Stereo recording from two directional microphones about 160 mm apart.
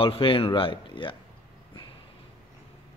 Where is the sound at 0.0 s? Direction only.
35° left (ahead or behind).